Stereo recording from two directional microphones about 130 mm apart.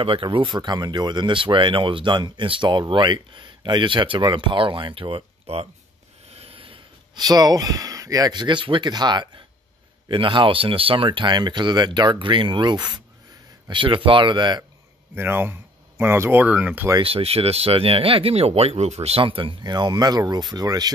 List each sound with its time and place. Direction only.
0.0 s speech: 45° right (ahead or behind)
6.3 s a sound: 45° right (ahead or behind)
7.2 s speech: 30° right (ahead or behind)
15.1 s speech: 15° right (ahead or behind)
17.0 s speech: 50° right (ahead or behind); by 20.9 s 30° right (ahead or behind)